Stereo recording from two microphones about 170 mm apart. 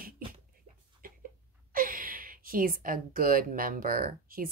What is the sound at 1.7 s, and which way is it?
A woman's voice, 55° right (ahead or behind).